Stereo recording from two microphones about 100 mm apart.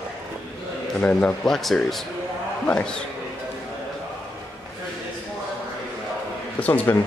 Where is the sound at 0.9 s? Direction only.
10° left (ahead or behind).